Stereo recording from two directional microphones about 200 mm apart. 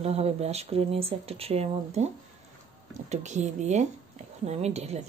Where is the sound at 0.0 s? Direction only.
30° right (ahead or behind).